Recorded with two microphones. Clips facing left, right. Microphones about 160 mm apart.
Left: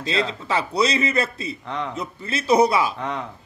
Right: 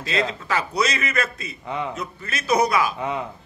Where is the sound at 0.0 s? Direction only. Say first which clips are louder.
Even; 30° left (ahead or behind).